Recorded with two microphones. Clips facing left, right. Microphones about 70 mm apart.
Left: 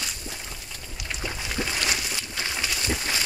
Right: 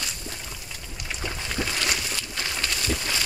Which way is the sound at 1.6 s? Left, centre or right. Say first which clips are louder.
Even; centre.